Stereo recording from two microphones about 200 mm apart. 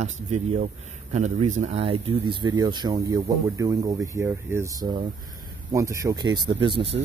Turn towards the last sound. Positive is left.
turn(degrees=-25)  # may be behind; listen again after turning